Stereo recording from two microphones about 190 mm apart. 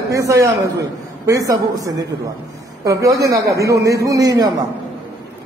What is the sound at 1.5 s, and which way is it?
A man's voice, 15° right (ahead or behind).